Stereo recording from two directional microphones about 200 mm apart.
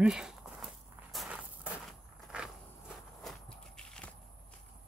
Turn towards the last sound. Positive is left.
turn(degrees=5)  # may be behind; listen again after turning